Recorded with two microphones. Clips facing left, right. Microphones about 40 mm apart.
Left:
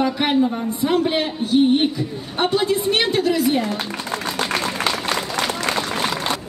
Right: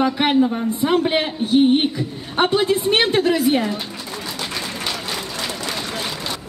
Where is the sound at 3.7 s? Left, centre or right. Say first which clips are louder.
Left 3 dB; left.